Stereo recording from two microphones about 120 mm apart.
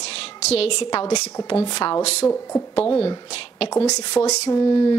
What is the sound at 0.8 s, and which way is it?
Speech, 35° left (ahead or behind).